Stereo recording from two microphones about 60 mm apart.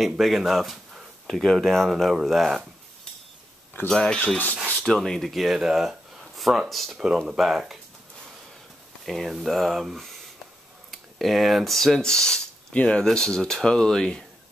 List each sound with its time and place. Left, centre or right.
0.0 s speech: centre
3.9 s speech: centre
9.0 s speech: centre